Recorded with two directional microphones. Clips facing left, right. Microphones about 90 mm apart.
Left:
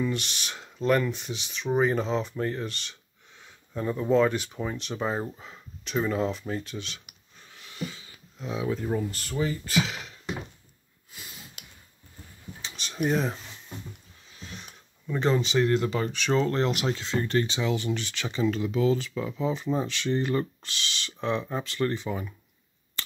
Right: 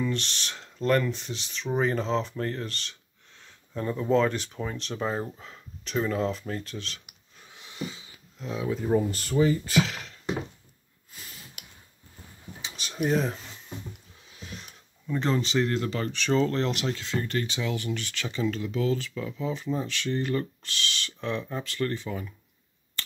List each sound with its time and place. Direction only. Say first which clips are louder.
0.0 s speech: even; 5° left (ahead or behind)
7.5 s a sound: even; 20° right (ahead or behind)
8.4 s speech: left 1 dB; 5° left (ahead or behind)
8.8 s speech: right 4 dB; 10° right (ahead or behind)
9.7 s a sound: right 2 dB; centre (ahead or behind)
12.5 s a sound: even; 5° right (ahead or behind)
14.5 s speech: right 1 dB; centre (ahead or behind); by 21.5 s 20° left (ahead or behind)
21.5 s speech: left 2 dB; 30° left (ahead or behind)
21.7 s speech: left 2 dB; 20° left (ahead or behind)